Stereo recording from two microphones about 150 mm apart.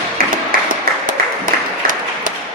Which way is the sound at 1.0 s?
65° right (ahead or behind).